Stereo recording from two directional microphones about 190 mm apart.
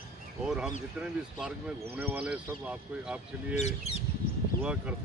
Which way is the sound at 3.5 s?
35° left (ahead or behind).